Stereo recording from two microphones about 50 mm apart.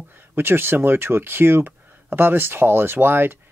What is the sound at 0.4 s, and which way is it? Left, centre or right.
A man's voice, right.